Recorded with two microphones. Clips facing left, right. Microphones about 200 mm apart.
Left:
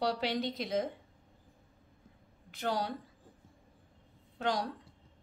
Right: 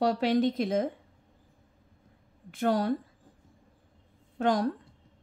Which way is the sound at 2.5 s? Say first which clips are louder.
Right 8 dB; 50° right (ahead or behind).